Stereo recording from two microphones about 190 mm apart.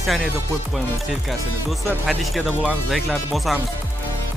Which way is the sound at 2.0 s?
Centre (ahead or behind).